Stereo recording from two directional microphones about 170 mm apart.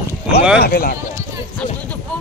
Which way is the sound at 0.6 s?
65° left (ahead or behind).